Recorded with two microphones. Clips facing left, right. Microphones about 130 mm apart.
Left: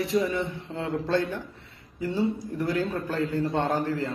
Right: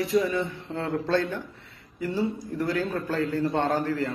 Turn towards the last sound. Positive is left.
turn(degrees=20)  # may be behind; listen again after turning